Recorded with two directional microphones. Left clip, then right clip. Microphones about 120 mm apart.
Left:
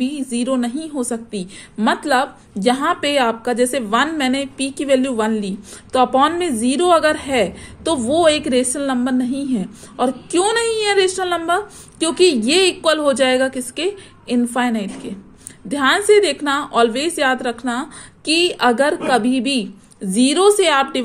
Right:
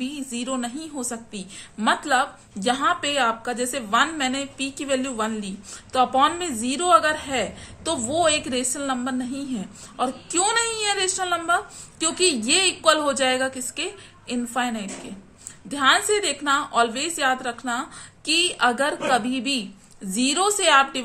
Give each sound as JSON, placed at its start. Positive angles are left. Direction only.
{"t": 0.0, "sound": "a woman's voice", "side_deg": 35}